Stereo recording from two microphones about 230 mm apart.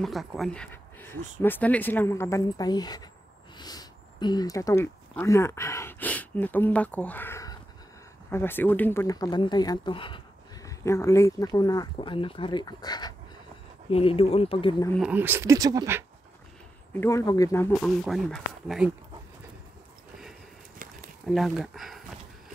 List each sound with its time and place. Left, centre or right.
0.0 s speech: centre; by 14.9 s left
15.0 s speech: centre
16.9 s speech: centre
20.8 s a sound: right
21.3 s speech: centre